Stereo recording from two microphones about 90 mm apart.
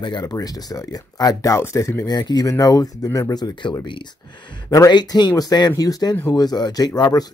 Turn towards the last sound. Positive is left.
turn(degrees=50)  # may be behind; listen again after turning